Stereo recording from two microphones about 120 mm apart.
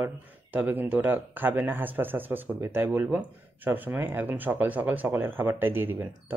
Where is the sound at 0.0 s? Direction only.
15° right (ahead or behind).